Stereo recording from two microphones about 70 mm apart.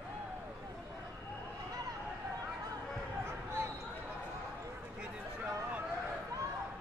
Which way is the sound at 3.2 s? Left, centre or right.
Right.